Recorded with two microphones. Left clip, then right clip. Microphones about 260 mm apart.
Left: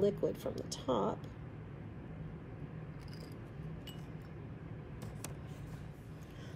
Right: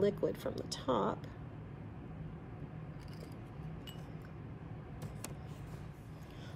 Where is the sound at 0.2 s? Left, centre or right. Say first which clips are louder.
Even; right.